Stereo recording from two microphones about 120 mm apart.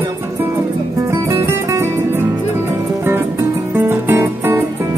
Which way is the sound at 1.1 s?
25° right (ahead or behind).